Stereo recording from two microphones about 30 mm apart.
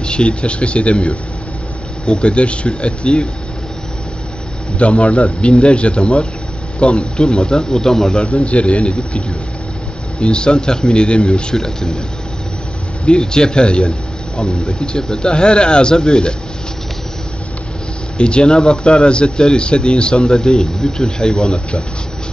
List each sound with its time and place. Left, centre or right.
0.0 s speech: left
2.2 s speech: left
4.7 s speech: left
7.0 s speech: left
8.5 s speech: left
10.2 s speech: left
11.5 s speech: left
13.2 s speech: left
13.8 s a sound: left
14.7 s speech: left
18.1 s speech: left